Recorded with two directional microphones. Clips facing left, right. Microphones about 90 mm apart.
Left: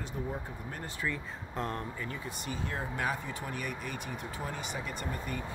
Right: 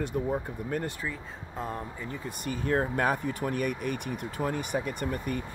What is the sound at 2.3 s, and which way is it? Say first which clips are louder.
Speech: right 13 dB; 50° right (ahead or behind).